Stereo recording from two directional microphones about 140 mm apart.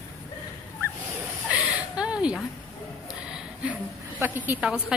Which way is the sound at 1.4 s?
10° right (ahead or behind).